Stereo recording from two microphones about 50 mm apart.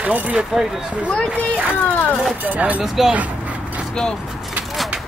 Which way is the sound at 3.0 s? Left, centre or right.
Centre.